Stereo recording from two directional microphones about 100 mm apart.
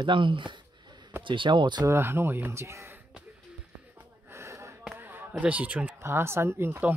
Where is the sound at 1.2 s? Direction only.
55° right (ahead or behind).